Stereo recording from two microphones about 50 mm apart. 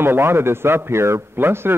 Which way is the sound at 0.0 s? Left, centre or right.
Right.